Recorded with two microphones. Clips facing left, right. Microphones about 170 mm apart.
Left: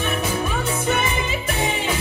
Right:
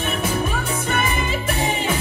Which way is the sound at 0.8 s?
50° right (ahead or behind).